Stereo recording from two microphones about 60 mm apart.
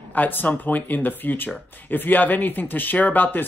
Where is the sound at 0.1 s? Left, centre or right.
Left.